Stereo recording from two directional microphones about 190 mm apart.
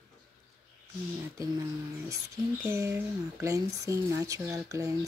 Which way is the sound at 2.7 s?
15° right (ahead or behind).